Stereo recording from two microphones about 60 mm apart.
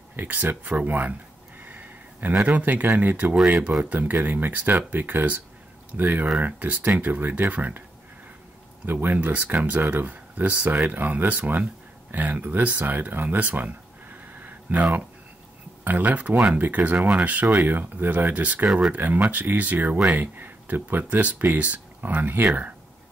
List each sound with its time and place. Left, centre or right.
0.1 s speech: right
1.6 s a sound: right
2.4 s speech: right
8.9 s speech: right
18.7 s speech: centre
18.9 s speech: right